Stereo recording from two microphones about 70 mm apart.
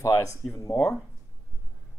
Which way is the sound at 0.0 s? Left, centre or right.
Left.